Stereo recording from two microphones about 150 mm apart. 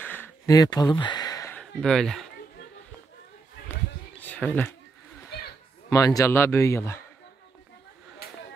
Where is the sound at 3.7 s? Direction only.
10° left (ahead or behind).